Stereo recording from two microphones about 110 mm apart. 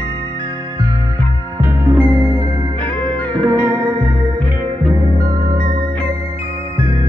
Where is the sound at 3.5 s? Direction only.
20° right (ahead or behind).